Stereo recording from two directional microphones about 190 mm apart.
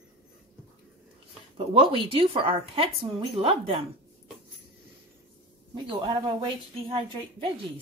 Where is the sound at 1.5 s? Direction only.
30° right (ahead or behind).